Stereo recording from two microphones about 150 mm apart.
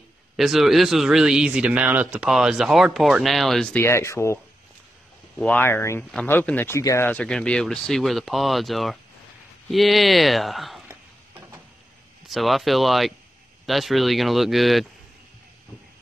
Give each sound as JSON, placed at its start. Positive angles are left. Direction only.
{"t": 0.4, "sound": "speech", "side_deg": 0}
{"t": 3.8, "sound": "speech", "side_deg": 20}
{"t": 5.4, "sound": "speech", "side_deg": 10}
{"t": 10.9, "sound": "a sound", "side_deg": -15}
{"t": 12.3, "sound": "speech", "side_deg": 0}